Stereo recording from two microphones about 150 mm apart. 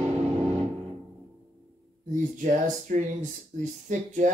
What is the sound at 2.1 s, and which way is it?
Speech, 60° right (ahead or behind).